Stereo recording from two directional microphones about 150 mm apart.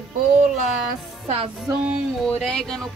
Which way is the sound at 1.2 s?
40° right (ahead or behind).